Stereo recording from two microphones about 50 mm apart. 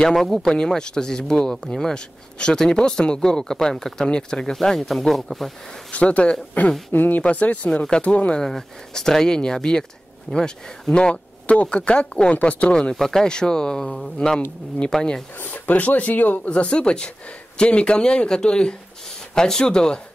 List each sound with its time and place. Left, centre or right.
0.0 s speech: centre
5.9 s speech: left
6.6 s speech: left
7.7 s speech: centre
8.4 s speech: centre; by 12.7 s left
12.9 s speech: centre
15.3 s speech: left
16.4 s speech: left